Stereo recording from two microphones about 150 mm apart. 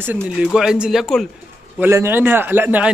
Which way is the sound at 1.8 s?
15° right (ahead or behind).